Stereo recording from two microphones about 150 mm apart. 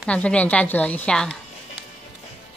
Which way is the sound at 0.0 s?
10° left (ahead or behind).